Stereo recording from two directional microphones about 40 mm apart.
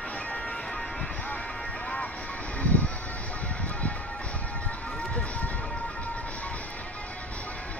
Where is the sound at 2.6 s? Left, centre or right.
Left.